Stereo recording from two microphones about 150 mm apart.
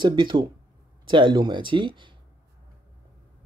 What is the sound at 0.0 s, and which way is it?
Speech, 30° right (ahead or behind).